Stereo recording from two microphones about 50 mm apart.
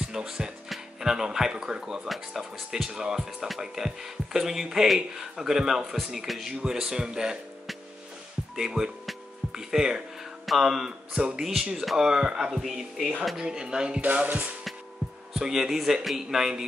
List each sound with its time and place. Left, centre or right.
0.0 s music: centre
0.7 s speech: centre
6.5 s speech: centre
8.5 s speech: centre
13.4 s speech: centre
14.0 s music: right
15.3 s speech: centre